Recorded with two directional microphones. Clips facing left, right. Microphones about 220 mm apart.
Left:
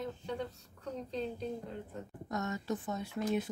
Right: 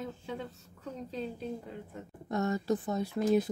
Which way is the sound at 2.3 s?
35° right (ahead or behind).